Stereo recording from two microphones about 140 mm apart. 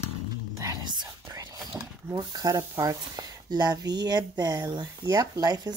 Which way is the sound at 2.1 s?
30° right (ahead or behind).